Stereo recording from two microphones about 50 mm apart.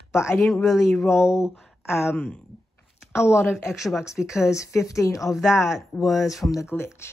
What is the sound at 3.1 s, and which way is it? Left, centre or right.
Speech, left.